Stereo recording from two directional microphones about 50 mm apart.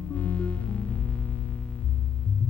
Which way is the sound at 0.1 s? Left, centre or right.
Left.